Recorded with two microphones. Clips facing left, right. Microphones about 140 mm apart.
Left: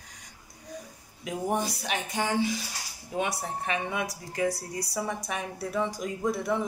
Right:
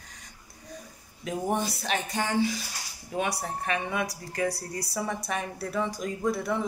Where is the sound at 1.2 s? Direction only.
15° left (ahead or behind).